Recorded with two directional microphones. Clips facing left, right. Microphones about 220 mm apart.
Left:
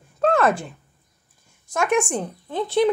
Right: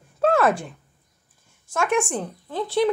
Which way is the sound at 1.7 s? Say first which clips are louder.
Left 2 dB; 15° left (ahead or behind).